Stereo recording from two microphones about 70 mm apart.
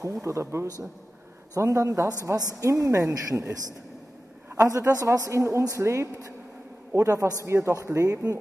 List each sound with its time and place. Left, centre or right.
0.0 s a man's voice: right
4.6 s a man's voice: right